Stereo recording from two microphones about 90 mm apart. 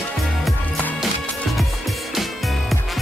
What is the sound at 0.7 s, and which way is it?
Music, 15° left (ahead or behind).